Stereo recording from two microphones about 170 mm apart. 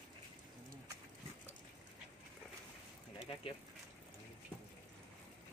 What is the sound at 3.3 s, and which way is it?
Speech, 30° left (ahead or behind).